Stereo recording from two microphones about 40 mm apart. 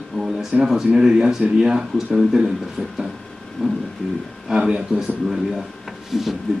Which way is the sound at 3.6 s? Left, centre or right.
Centre.